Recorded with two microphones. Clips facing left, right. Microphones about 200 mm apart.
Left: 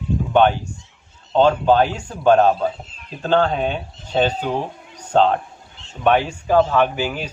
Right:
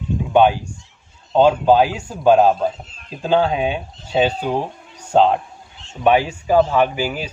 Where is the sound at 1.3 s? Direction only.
10° right (ahead or behind).